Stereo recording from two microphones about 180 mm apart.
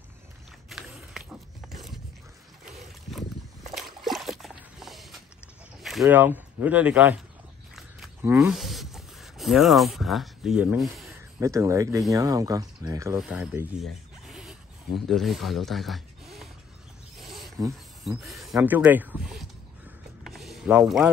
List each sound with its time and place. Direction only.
0.7 s a sound: 5° right (ahead or behind)
4.0 s a sound: centre (ahead or behind)
6.0 s speech: 10° right (ahead or behind)
8.2 s speech: 10° right (ahead or behind)
8.5 s speech: centre (ahead or behind)
11.3 s speech: 15° right (ahead or behind)
13.2 s speech: 5° right (ahead or behind)
17.2 s wild animals: centre (ahead or behind)
18.2 s speech: centre (ahead or behind)
20.2 s vehicle: centre (ahead or behind)